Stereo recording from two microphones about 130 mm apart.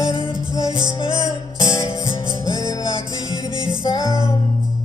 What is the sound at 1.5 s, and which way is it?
Music, 40° left (ahead or behind).